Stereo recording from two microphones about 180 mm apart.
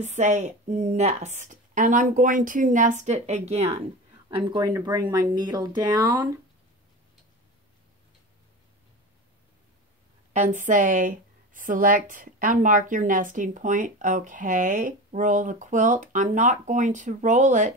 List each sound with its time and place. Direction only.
0.0 s a woman's voice: 40° right (ahead or behind)
4.4 s speech: 25° right (ahead or behind)
10.3 s a woman's voice: 45° right (ahead or behind)